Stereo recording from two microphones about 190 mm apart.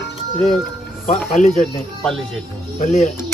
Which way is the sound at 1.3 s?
40° left (ahead or behind).